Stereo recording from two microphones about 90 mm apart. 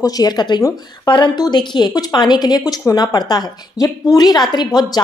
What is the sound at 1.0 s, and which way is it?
A woman's voice, 60° left (ahead or behind).